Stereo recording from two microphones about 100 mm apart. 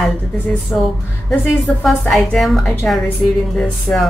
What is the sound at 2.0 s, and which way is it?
Speech, 5° left (ahead or behind).